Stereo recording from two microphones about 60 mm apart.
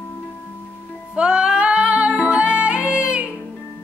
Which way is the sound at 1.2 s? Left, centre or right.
Centre.